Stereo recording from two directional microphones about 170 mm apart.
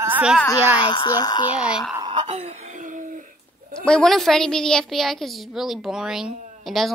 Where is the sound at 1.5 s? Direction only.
5° right (ahead or behind).